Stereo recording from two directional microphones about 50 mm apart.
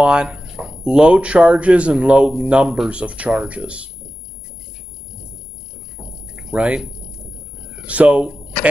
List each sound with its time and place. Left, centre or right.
0.0 s speech: centre
6.5 s speech: right